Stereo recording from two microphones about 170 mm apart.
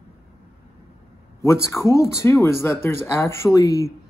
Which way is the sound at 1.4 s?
15° left (ahead or behind).